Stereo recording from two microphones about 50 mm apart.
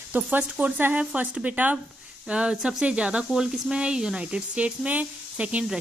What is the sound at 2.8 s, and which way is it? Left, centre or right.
Speech, right.